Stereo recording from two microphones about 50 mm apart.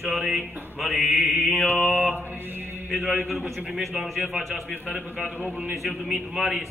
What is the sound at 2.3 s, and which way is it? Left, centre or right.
Mantra, right.